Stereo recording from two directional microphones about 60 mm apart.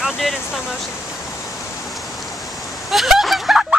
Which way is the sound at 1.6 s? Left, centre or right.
Left.